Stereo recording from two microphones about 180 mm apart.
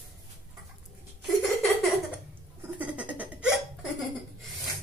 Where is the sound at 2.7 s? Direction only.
10° right (ahead or behind).